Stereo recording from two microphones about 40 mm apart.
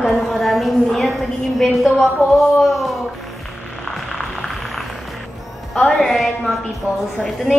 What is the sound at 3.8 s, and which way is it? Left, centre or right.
Music, centre.